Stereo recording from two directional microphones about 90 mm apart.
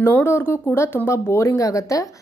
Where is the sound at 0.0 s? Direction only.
25° left (ahead or behind).